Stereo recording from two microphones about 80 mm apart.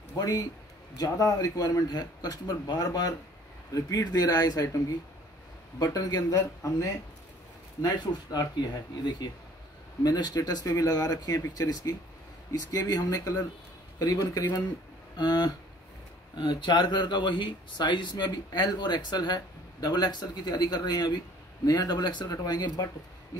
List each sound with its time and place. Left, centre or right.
0.1 s a man's voice: left
5.8 s a man's voice: left
10.0 s a man's voice: left
15.1 s speech: left
16.3 s speech: left